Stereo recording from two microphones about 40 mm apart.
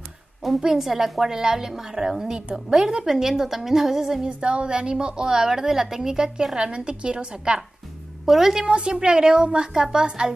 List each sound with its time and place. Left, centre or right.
0.6 s a woman's voice: centre
2.8 s a woman's voice: right
3.1 s a woman's voice: centre
4.3 s a woman's voice: right
8.3 s a woman's voice: centre
8.6 s a woman's voice: right